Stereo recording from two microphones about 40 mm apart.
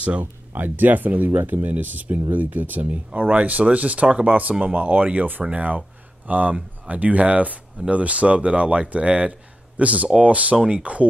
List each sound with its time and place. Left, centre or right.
0.0 s speech: right
0.5 s speech: right
2.8 s speech: right